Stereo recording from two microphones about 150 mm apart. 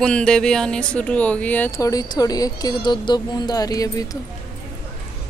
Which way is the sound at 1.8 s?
25° left (ahead or behind).